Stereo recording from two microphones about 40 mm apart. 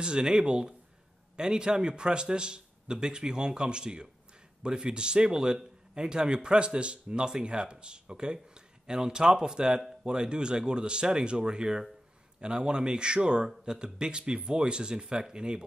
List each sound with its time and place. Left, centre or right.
0.0 s speech: right